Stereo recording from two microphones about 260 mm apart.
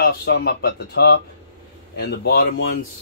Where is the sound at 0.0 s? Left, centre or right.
Left.